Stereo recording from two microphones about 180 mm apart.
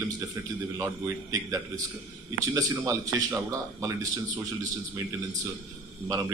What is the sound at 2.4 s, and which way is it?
Speech, 15° right (ahead or behind).